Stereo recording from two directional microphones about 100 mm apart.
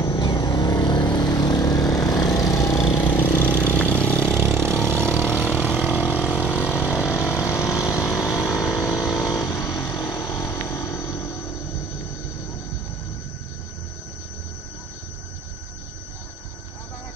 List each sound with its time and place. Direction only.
0.0 s vehicle: 45° left (ahead or behind)
3.2 s vehicle: 15° left (ahead or behind)
4.3 s vehicle: 20° right (ahead or behind); by 9.3 s centre (ahead or behind)
9.5 s vehicle: 30° left (ahead or behind)
9.8 s vehicle: 10° left (ahead or behind)
10.4 s a sound: 25° left (ahead or behind)